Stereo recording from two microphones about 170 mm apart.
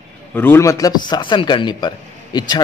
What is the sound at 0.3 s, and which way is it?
A man's voice, 10° left (ahead or behind).